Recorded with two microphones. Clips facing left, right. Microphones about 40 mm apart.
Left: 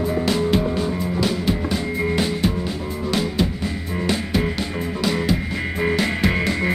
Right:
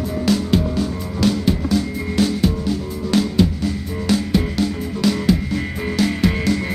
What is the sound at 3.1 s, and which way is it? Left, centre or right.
Music, centre.